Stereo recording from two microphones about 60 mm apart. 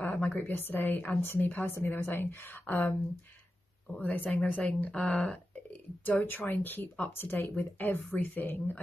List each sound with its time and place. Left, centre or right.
0.0 s a sound: left
0.4 s speech: left
4.0 s speech: left
4.9 s speech: centre
5.7 s speech: left